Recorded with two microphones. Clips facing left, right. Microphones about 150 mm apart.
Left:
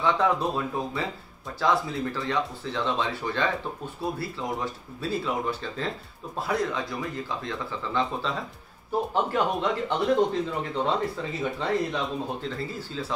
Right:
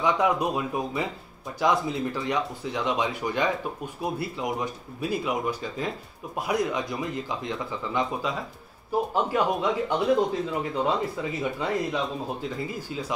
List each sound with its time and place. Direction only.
0.0 s speech: 15° right (ahead or behind)